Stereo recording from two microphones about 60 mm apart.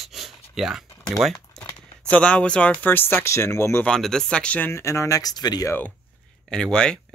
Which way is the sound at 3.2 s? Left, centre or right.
Left.